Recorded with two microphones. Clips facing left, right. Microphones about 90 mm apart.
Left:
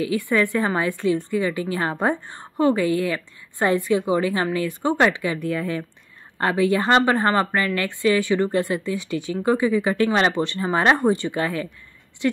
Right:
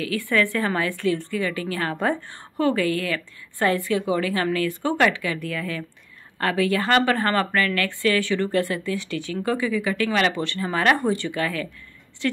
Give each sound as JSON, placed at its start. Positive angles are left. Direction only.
{"t": 0.0, "sound": "a woman's voice", "side_deg": 20}